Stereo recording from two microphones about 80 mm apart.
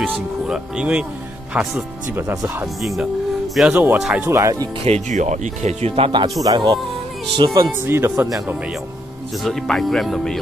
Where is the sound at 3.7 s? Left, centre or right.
Right.